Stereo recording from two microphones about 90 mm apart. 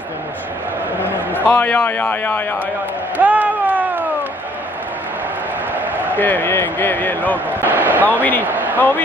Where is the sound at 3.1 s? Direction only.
20° right (ahead or behind).